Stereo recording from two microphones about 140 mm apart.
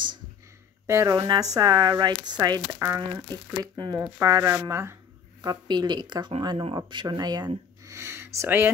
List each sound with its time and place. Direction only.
0.8 s speech: 25° right (ahead or behind)
5.4 s speech: 30° right (ahead or behind)